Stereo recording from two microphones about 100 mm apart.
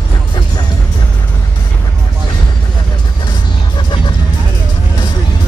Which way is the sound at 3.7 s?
55° left (ahead or behind).